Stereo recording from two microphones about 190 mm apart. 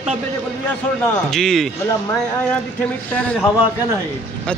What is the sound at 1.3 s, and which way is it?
Speech, centre (ahead or behind).